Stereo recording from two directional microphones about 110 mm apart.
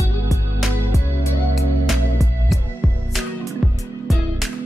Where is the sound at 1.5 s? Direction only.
Centre (ahead or behind).